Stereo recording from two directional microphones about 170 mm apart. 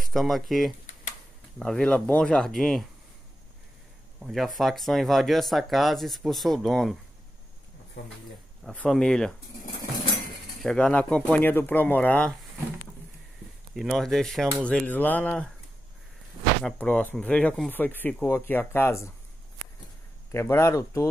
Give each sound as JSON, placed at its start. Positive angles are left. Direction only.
{"t": 0.1, "sound": "speech", "side_deg": 0}
{"t": 4.2, "sound": "speech", "side_deg": 0}
{"t": 8.6, "sound": "speech", "side_deg": 5}
{"t": 10.6, "sound": "speech", "side_deg": 5}
{"t": 13.7, "sound": "speech", "side_deg": 0}
{"t": 16.6, "sound": "speech", "side_deg": 10}
{"t": 20.2, "sound": "speech", "side_deg": 15}